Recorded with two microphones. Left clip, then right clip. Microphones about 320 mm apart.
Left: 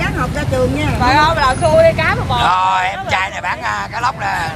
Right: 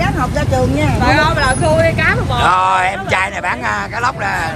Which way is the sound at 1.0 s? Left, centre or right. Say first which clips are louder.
Left 2 dB; left.